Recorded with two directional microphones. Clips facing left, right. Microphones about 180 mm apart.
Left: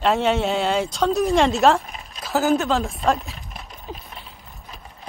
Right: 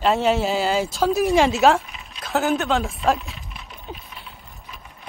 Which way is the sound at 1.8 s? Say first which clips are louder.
Left 3 dB; 40° left (ahead or behind).